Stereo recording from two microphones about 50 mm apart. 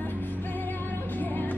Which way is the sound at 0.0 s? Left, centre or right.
Left.